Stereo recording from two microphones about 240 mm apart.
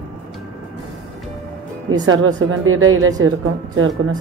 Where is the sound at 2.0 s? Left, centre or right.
Right.